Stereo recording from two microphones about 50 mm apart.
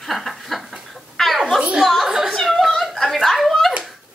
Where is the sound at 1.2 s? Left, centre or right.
Centre.